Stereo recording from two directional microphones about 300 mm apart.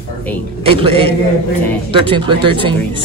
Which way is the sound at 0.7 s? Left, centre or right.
Centre.